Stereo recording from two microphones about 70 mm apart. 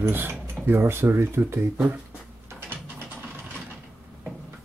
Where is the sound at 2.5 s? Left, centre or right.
Right.